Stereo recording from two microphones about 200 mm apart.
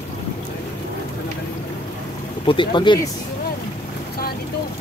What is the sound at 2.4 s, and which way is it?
Speech, 25° left (ahead or behind).